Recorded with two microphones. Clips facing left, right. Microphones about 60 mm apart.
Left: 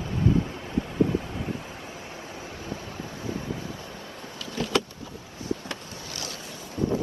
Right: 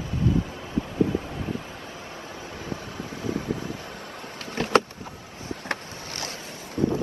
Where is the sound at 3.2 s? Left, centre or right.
Right.